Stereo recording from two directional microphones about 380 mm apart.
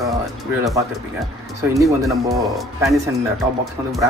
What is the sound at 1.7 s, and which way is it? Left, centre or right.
Speech, centre.